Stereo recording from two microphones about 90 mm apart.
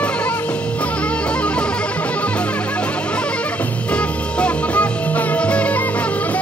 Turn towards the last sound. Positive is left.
turn(degrees=15)  # may be behind; listen again after turning